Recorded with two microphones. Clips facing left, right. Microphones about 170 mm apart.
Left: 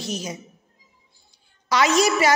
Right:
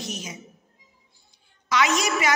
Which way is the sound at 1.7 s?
35° left (ahead or behind).